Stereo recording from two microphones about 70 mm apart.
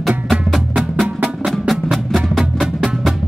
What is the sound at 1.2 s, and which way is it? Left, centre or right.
Music, centre.